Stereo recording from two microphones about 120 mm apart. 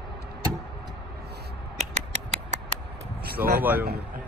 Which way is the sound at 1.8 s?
70° right (ahead or behind).